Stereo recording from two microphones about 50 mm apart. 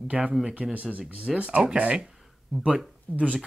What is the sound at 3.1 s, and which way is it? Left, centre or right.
Speech, left.